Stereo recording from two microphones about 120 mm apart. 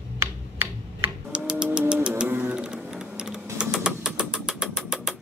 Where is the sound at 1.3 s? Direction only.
5° right (ahead or behind).